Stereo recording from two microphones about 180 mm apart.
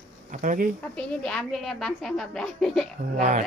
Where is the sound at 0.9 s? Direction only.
5° left (ahead or behind).